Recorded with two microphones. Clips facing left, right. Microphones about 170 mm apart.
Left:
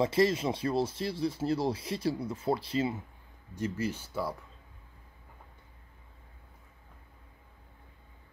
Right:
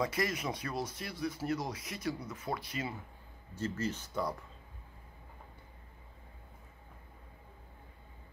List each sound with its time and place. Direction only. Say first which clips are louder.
0.0 s speech: left 8 dB; 25° left (ahead or behind)
3.5 s speech: left 3 dB; 15° left (ahead or behind)